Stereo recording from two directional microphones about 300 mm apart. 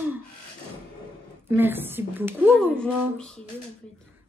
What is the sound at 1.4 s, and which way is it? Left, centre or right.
A woman's voice, centre.